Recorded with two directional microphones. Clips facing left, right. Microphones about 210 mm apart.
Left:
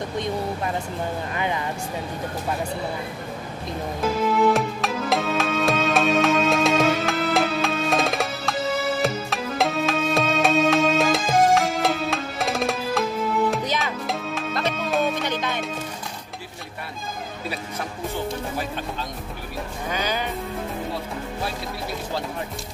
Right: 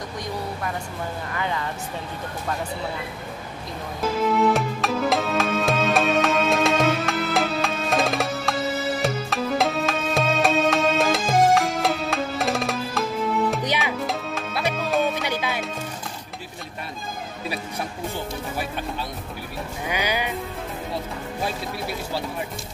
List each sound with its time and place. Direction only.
1.3 s speech: 20° left (ahead or behind)
4.2 s music: centre (ahead or behind)
19.9 s music: 10° right (ahead or behind)